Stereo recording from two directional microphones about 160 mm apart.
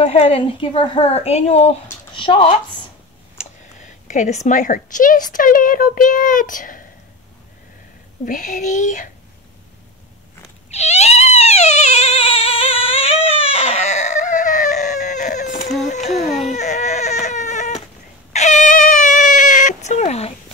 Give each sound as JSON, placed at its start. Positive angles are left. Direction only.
{"t": 0.0, "sound": "a woman's voice", "side_deg": 40}
{"t": 4.1, "sound": "speech", "side_deg": 50}
{"t": 8.3, "sound": "speech", "side_deg": 55}
{"t": 10.7, "sound": "frog", "side_deg": 45}
{"t": 15.9, "sound": "a sound", "side_deg": 45}
{"t": 16.4, "sound": "baby cry", "side_deg": 50}
{"t": 18.3, "sound": "a sound", "side_deg": 50}